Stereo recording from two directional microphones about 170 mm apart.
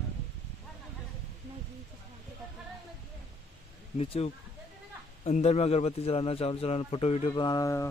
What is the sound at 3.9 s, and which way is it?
A man's voice, 35° left (ahead or behind).